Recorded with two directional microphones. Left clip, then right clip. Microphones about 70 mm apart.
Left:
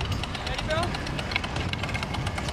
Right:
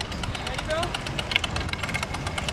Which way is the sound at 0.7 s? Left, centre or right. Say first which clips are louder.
Right 1 dB; left.